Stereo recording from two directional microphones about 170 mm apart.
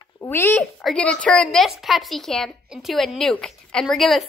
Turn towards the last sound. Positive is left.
turn(degrees=0)  # may be behind; listen again after turning